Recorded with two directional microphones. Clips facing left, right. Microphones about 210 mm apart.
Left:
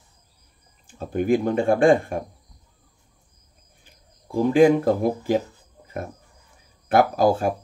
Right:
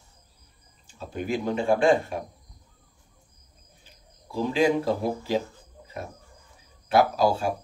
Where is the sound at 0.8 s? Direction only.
50° left (ahead or behind).